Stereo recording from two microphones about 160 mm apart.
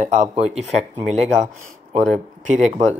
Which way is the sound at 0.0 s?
50° right (ahead or behind).